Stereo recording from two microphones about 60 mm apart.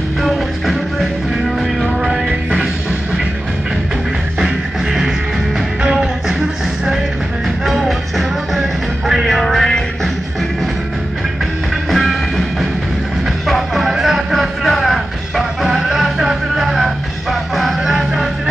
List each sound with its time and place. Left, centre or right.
0.2 s music: centre
5.8 s music: centre
7.6 s music: centre
11.9 s music: centre
13.5 s music: centre
14.6 s music: centre